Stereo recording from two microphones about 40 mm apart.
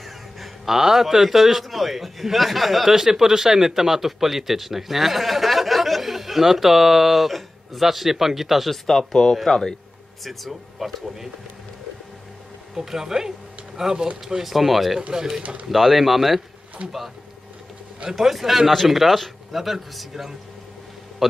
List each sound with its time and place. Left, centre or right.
0.0 s a man's voice: centre
8.8 s a man's voice: centre
12.7 s a man's voice: centre
15.0 s speech: centre
15.7 s a man's voice: centre
16.8 s speech: right
18.1 s a man's voice: centre